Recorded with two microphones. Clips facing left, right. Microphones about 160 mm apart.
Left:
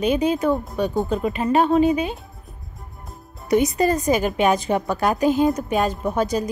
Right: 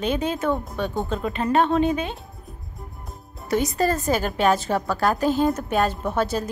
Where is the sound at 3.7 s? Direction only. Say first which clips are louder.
Left 3 dB; 15° left (ahead or behind).